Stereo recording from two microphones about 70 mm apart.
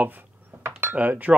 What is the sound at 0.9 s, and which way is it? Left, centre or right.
Speech, right.